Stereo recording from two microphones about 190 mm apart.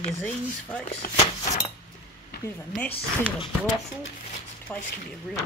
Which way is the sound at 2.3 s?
60° left (ahead or behind).